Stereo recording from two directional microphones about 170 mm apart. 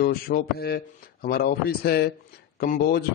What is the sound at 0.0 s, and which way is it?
A man's voice, 65° left (ahead or behind).